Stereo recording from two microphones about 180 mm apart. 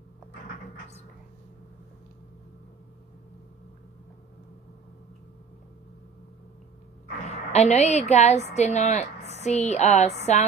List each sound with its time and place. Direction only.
7.3 s a woman's voice: 40° left (ahead or behind)